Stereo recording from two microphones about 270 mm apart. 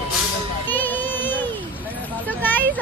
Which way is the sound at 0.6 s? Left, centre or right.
Centre.